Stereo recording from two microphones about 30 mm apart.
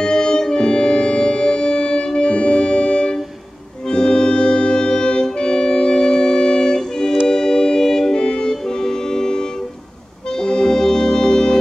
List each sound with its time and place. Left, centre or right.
0.0 s music: left
3.9 s organ: left
8.2 s music: left
10.3 s accordion: left